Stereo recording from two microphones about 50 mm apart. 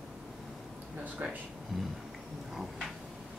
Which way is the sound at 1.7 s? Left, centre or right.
Centre.